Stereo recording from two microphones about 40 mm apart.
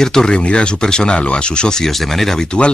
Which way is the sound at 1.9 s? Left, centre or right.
Centre.